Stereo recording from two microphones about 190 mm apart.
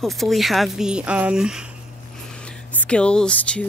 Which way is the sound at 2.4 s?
5° left (ahead or behind).